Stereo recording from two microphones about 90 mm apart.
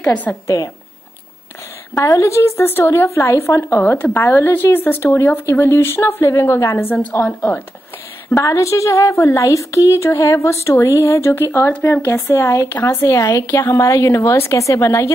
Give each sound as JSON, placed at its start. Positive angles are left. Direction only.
{"t": 0.1, "sound": "a woman's voice", "side_deg": 20}
{"t": 2.0, "sound": "a woman's voice", "side_deg": 35}
{"t": 6.9, "sound": "a woman's voice", "side_deg": 15}
{"t": 8.3, "sound": "a woman's voice", "side_deg": 35}